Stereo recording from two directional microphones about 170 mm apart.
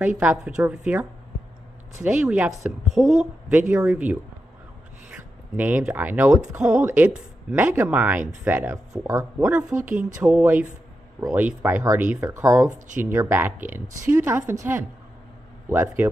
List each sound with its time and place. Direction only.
0.2 s speech: 10° right (ahead or behind)
2.0 s a woman's voice: 5° right (ahead or behind)
12.7 s speech: 50° right (ahead or behind)
13.0 s a woman's voice: 15° right (ahead or behind)